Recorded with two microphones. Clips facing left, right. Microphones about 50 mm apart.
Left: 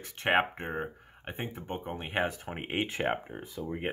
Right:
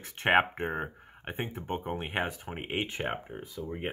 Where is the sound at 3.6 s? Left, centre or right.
Centre.